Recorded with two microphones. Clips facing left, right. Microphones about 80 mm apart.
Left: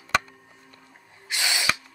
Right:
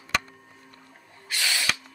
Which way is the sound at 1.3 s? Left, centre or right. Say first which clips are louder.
Left 2 dB; centre.